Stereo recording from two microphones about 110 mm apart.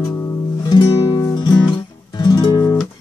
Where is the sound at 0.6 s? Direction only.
35° left (ahead or behind).